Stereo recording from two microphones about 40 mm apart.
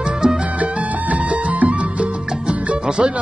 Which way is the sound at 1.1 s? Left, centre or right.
Right.